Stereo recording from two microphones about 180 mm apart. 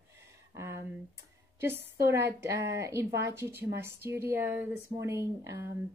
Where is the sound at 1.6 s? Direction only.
15° right (ahead or behind).